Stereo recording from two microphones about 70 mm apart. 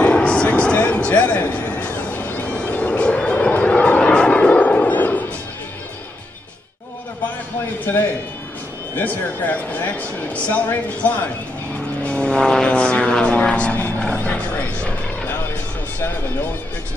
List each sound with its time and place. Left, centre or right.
0.0 s vehicle: centre
7.9 s speech: left
12.0 s vehicle: centre